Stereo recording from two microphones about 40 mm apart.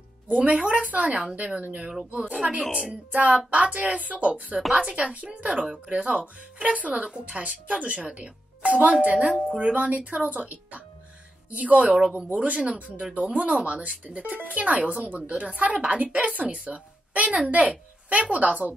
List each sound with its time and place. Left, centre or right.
0.3 s speech: right
1.8 s speech: centre
2.0 s a woman's voice: right
3.1 s speech: right
5.5 s a woman's voice: centre
5.9 s speech: right
7.0 s a woman's voice: right
7.3 s speech: right
11.9 s a woman's voice: right